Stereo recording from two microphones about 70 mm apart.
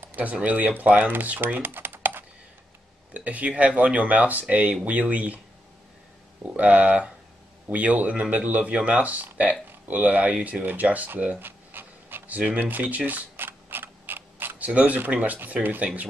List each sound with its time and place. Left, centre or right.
0.0 s speech: right
6.4 s speech: right